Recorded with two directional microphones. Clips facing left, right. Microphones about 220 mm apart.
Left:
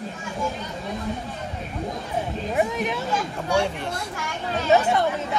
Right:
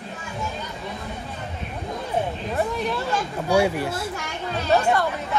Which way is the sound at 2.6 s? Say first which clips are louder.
Left 1 dB; 20° left (ahead or behind).